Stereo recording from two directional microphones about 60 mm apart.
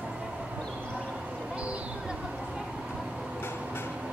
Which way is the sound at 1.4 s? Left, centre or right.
Right.